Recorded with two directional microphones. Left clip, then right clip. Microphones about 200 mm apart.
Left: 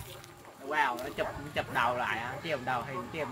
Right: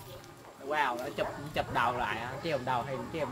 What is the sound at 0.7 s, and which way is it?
Speech, 55° right (ahead or behind).